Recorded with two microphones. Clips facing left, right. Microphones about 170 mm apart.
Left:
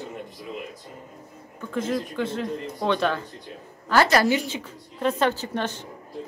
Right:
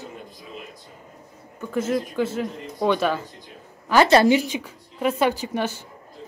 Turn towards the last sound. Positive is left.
turn(degrees=-10)  # may be behind; listen again after turning